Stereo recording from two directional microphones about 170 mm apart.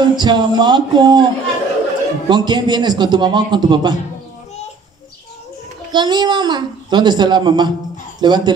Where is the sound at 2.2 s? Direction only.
25° right (ahead or behind).